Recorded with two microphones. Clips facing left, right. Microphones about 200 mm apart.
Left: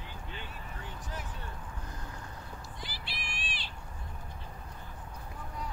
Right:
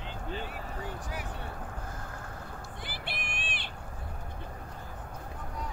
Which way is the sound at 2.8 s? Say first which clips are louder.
Right 5 dB; 55° right (ahead or behind).